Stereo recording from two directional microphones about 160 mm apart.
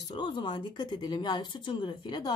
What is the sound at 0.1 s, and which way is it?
A woman's voice, 30° left (ahead or behind).